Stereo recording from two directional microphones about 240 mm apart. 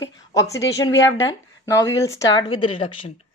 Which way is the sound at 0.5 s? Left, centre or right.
Centre.